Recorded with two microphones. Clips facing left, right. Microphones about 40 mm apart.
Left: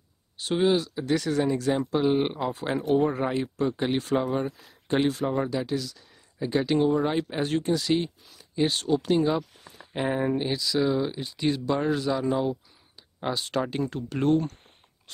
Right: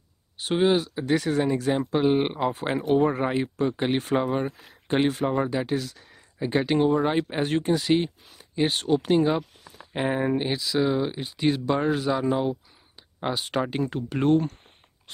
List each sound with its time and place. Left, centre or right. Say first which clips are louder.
0.4 s speech: right 1 dB; right
2.8 s speech: right 2 dB; centre
3.1 s speech: right 2 dB; right
6.4 s speech: right 1 dB; right